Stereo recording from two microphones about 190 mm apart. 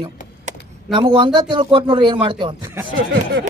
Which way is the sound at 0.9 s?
25° right (ahead or behind).